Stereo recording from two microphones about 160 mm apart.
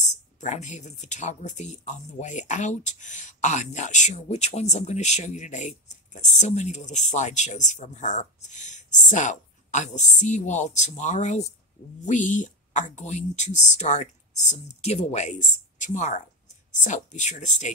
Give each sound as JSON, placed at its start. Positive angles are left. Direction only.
{"t": 0.1, "sound": "speech", "side_deg": 50}